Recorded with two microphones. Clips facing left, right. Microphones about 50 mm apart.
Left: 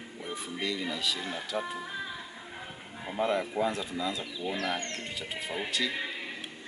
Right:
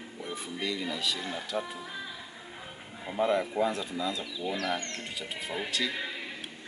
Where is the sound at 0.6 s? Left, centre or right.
Centre.